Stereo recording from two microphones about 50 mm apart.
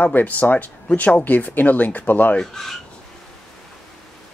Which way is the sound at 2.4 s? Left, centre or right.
Centre.